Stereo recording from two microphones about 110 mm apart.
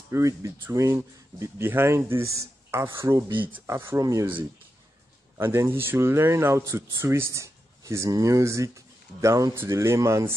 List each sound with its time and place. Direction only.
0.1 s speech: 30° right (ahead or behind)
5.4 s speech: 20° right (ahead or behind)